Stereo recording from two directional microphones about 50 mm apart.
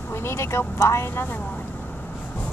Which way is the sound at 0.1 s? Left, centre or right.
Left.